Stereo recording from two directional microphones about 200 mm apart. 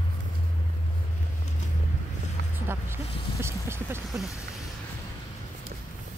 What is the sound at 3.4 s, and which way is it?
Vehicle, 10° right (ahead or behind).